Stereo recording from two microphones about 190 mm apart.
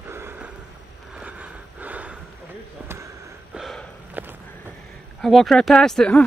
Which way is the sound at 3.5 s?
Centre (ahead or behind).